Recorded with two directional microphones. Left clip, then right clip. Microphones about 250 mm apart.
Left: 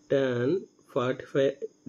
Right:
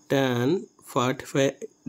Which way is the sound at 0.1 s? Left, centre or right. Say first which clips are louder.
Right 2 dB; right.